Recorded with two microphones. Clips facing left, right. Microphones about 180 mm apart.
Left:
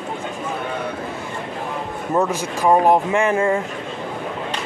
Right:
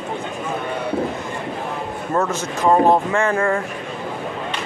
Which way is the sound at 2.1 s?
15° left (ahead or behind).